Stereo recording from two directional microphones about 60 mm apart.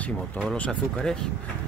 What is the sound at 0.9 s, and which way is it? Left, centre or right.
Speech, centre.